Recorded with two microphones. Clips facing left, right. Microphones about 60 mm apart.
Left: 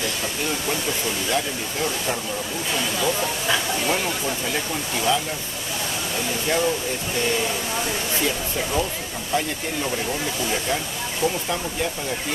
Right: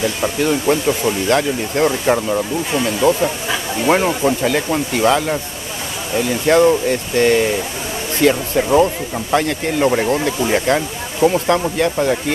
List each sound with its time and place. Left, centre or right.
0.4 s speech: right
1.3 s speech: right
3.0 s speech: right
3.8 s speech: right
6.4 s speech: right
11.2 s speech: right